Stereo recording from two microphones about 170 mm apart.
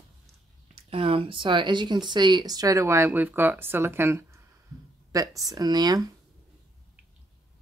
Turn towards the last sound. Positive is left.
turn(degrees=-20)  # may be behind; listen again after turning